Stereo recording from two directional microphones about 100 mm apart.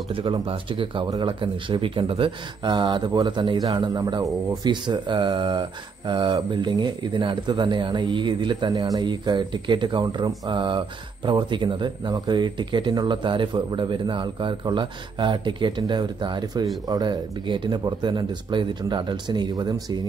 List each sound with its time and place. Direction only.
0.1 s speech: 60° right (ahead or behind); by 4.6 s 35° right (ahead or behind)
4.6 s speech: 50° right (ahead or behind)